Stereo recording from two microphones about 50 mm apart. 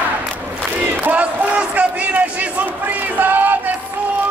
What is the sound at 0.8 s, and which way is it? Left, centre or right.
Crowd, right.